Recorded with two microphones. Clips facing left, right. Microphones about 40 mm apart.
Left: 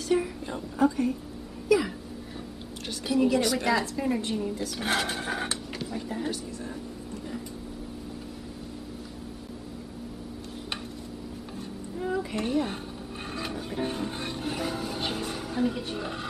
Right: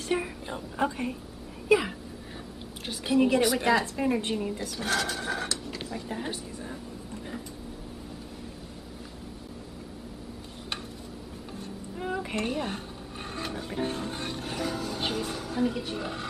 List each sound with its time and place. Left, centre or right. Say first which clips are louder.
0.1 s a sound: left 4 dB; right
0.7 s a woman's voice: left 5 dB; right
3.1 s a woman's voice: right 1 dB; right
3.3 s speech: right 1 dB; centre
3.8 s a woman's voice: right 1 dB; right
4.8 s speech: even; left
6.1 s speech: left 3 dB; centre
12.0 s a sound: left 2 dB; right
12.4 s speech: left 3 dB; centre
13.3 s music: even; centre
15.1 s speech: even; centre